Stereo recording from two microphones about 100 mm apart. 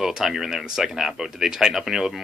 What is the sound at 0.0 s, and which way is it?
Speech, 5° right (ahead or behind).